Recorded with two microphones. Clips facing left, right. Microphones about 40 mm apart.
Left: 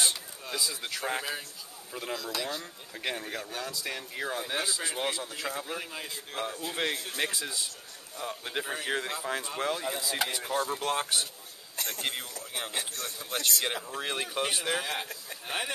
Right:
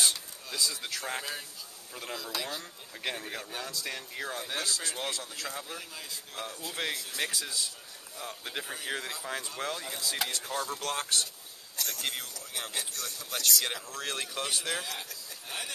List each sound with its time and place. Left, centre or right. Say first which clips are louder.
0.0 s speech: even; centre
2.1 s speech: left 1 dB; centre
5.8 s speech: left 4 dB; left
11.7 s a man's voice: left 1 dB; left
14.9 s speech: left 5 dB; left